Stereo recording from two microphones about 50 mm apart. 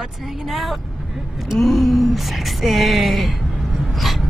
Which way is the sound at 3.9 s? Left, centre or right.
Centre.